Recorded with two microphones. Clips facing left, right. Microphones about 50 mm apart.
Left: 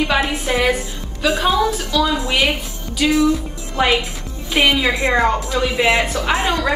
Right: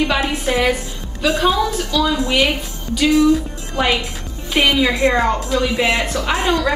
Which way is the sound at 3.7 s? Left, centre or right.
Centre.